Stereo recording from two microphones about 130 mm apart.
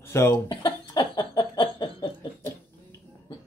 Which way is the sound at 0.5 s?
35° left (ahead or behind).